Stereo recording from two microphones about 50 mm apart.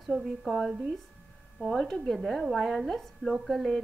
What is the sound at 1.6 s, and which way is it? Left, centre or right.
Speech, left.